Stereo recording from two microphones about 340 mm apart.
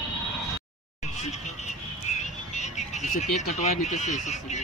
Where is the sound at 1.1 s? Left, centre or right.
Centre.